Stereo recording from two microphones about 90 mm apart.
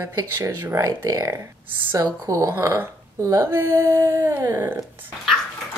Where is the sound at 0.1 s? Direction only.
40° right (ahead or behind).